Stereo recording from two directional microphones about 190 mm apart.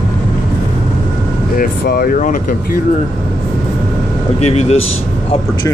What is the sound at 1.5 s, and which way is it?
Speech, 50° left (ahead or behind).